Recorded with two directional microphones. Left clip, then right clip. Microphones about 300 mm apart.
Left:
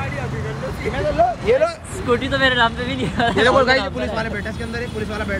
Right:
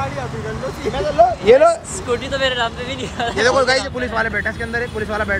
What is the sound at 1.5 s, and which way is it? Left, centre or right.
Speech, right.